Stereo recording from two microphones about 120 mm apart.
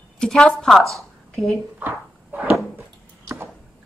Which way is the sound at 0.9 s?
Centre (ahead or behind).